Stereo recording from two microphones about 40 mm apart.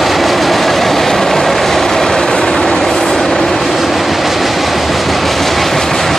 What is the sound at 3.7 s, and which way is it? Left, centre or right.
Train, centre.